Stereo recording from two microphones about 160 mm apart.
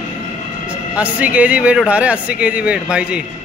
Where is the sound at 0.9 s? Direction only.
10° right (ahead or behind).